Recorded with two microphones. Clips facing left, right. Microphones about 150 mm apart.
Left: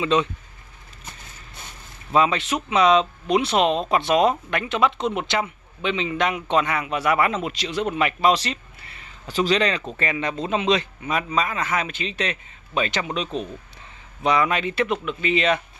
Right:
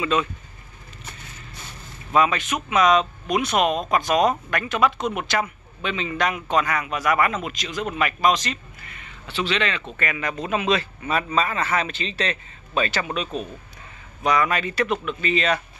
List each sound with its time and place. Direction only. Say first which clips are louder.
0.0 s a man's voice: left 2 dB; 25° left (ahead or behind)
2.1 s a man's voice: even; 25° left (ahead or behind)